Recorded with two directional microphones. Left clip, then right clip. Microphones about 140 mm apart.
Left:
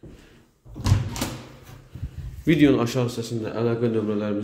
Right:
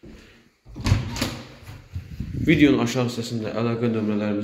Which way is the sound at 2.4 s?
30° left (ahead or behind).